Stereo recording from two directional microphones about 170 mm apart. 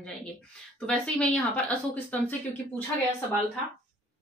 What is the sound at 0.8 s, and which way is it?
Speech, 5° left (ahead or behind).